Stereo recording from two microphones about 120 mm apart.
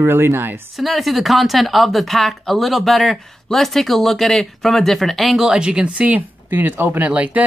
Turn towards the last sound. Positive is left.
turn(degrees=-10)  # may be behind; listen again after turning